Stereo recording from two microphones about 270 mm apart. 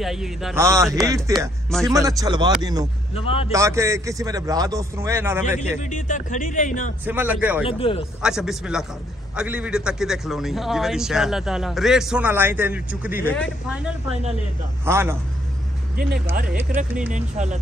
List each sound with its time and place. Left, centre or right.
0.0 s a man's voice: centre
3.2 s speech: left
3.5 s a man's voice: centre
5.8 s speech: left
7.1 s a man's voice: centre
7.6 s speech: centre
8.2 s a man's voice: centre
17.1 s speech: right